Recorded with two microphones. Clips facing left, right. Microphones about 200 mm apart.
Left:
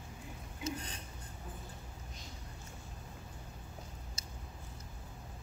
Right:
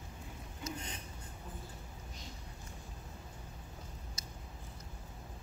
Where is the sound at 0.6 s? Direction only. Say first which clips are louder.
Left 4 dB; 30° left (ahead or behind).